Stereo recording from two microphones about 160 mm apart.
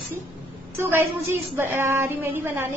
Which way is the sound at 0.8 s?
15° right (ahead or behind).